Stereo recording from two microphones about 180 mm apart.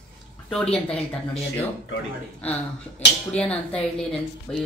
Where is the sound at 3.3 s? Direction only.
5° left (ahead or behind).